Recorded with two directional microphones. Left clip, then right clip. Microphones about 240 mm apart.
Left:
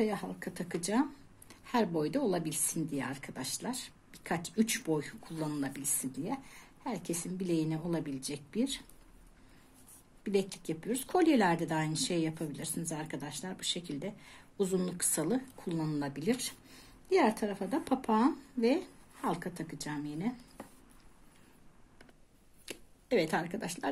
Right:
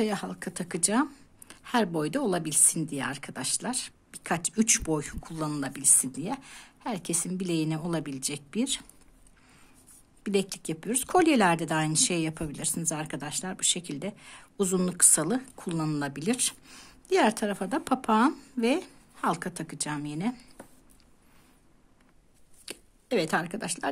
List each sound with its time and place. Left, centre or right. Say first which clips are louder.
0.0 s speech: right 4 dB; right
10.2 s speech: right 4 dB; right
22.7 s speech: right 2 dB; right